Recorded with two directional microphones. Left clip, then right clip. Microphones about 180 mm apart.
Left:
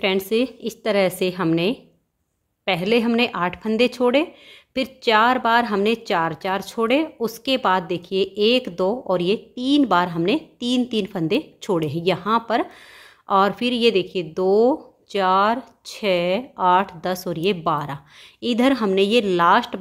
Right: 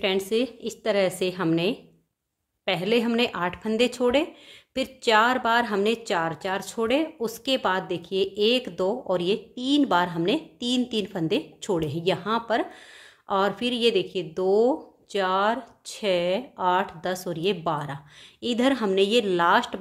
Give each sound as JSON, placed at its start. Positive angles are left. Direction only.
{"t": 0.0, "sound": "a woman's voice", "side_deg": 25}